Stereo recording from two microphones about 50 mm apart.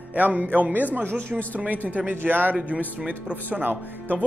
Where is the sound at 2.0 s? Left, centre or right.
Right.